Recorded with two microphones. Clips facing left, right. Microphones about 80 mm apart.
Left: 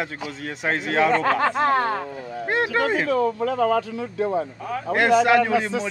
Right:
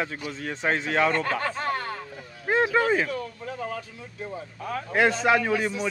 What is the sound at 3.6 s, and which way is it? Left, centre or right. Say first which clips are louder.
Speech: left 13 dB; left.